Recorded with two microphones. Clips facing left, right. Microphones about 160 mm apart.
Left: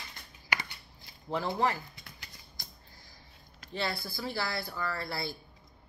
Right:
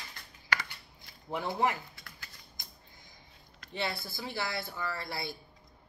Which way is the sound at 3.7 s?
20° right (ahead or behind).